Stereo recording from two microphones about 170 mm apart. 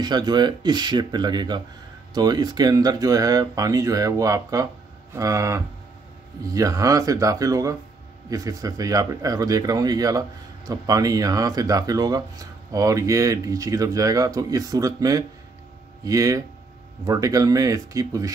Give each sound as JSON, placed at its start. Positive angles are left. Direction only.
{"t": 0.0, "sound": "speech", "side_deg": -25}